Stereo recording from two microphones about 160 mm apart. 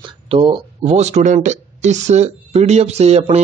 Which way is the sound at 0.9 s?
45° right (ahead or behind).